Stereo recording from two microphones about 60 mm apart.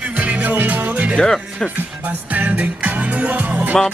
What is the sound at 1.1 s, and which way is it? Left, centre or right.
Speech, centre.